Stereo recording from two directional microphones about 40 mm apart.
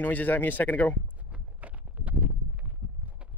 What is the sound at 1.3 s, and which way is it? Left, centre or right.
Clip-clop, right.